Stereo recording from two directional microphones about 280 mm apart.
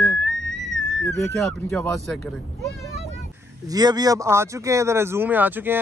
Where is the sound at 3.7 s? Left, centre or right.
Centre.